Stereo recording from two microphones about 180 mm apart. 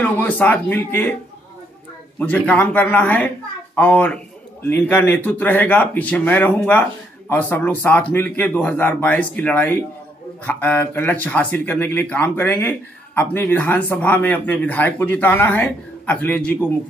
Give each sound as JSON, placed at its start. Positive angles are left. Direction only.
{"t": 0.0, "sound": "speech", "side_deg": 10}
{"t": 2.1, "sound": "speech", "side_deg": 10}